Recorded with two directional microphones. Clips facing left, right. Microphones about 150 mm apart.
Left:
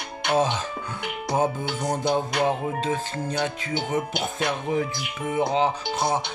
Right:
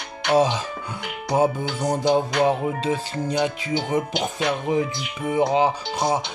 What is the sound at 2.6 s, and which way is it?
Speech, 15° right (ahead or behind).